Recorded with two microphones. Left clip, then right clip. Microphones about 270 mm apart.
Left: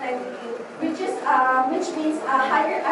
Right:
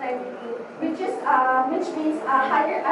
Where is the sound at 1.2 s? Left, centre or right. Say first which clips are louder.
Left 1 dB; centre.